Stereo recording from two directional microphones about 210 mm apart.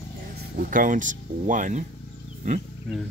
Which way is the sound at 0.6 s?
40° right (ahead or behind).